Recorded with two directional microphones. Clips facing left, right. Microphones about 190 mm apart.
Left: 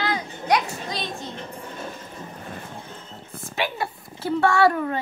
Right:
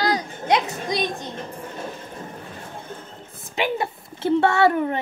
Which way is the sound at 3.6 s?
20° right (ahead or behind).